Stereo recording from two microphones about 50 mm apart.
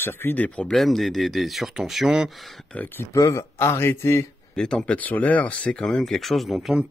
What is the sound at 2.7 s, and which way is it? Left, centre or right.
Speech, left.